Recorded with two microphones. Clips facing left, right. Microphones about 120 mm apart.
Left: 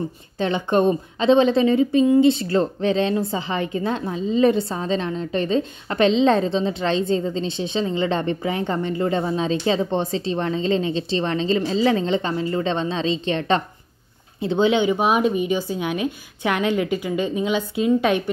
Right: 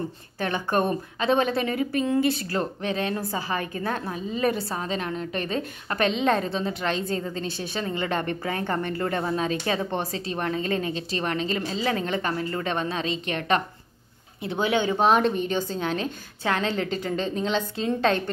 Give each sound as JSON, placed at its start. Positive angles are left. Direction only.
{"t": 0.4, "sound": "a woman's voice", "side_deg": 20}